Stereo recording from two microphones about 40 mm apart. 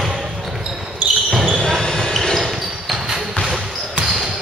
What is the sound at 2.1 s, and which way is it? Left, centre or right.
Basketball bounce, centre.